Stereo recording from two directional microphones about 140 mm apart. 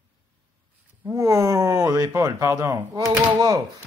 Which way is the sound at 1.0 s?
20° right (ahead or behind).